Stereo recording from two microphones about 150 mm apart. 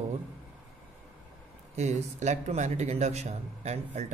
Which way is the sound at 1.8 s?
50° right (ahead or behind).